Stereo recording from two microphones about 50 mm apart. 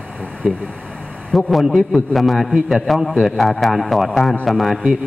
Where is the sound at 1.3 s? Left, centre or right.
Centre.